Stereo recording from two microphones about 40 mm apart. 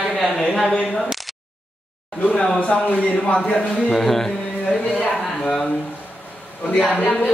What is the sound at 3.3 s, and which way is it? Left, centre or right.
Speech, left.